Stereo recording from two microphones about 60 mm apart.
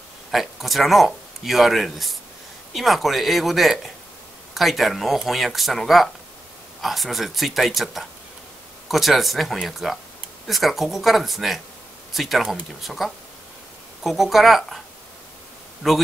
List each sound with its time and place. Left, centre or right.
0.3 s speech: centre
15.8 s speech: centre